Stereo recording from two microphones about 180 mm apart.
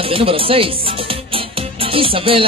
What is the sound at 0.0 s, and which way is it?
Music, 30° right (ahead or behind).